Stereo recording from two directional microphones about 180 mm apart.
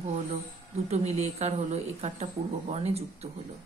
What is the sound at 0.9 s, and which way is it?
Speech, 35° right (ahead or behind).